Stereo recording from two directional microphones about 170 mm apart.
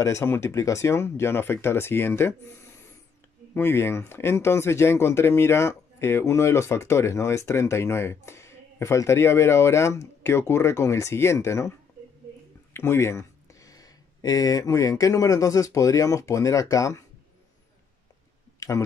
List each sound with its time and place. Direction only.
0.0 s speech: 15° left (ahead or behind)
12.7 s speech: 15° left (ahead or behind)